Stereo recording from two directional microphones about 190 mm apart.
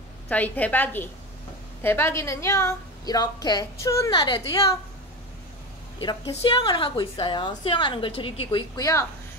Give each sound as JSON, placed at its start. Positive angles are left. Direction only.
{"t": 0.3, "sound": "a woman's voice", "side_deg": 10}
{"t": 5.9, "sound": "a woman's voice", "side_deg": 25}